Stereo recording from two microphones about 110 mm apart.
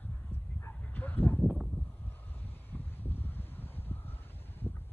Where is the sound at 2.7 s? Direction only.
20° left (ahead or behind).